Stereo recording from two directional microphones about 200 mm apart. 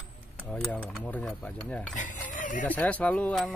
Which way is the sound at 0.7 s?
5° left (ahead or behind).